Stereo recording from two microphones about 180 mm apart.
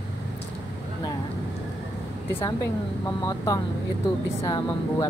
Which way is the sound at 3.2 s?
20° left (ahead or behind).